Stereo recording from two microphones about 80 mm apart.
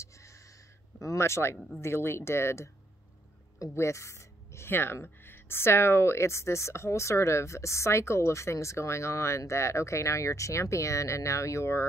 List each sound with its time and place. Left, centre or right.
0.0 s a sound: left
0.9 s speech: left
3.7 s speech: left